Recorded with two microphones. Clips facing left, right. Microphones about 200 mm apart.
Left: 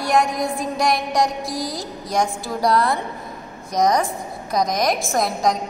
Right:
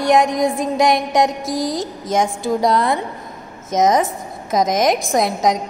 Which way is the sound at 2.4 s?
20° right (ahead or behind).